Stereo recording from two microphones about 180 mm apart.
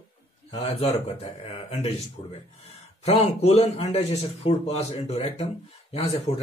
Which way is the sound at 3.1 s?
35° left (ahead or behind).